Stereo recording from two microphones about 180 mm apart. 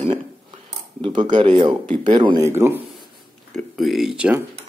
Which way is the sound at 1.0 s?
25° right (ahead or behind).